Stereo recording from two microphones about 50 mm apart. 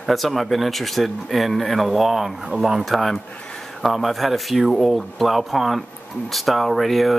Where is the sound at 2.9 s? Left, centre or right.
Centre.